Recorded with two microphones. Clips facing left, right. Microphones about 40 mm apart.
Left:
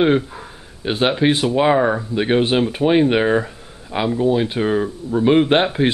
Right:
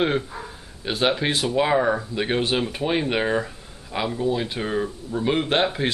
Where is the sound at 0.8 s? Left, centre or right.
Centre.